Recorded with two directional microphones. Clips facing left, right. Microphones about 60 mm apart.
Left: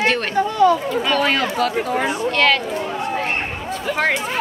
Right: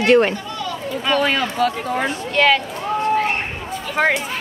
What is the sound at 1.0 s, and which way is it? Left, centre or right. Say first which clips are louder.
Speech: right 2 dB; centre.